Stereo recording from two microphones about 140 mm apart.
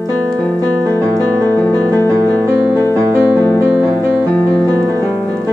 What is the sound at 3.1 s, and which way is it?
Music, 10° left (ahead or behind).